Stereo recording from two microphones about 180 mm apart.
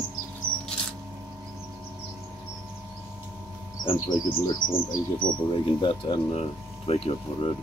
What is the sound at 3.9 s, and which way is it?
Speech, 25° left (ahead or behind).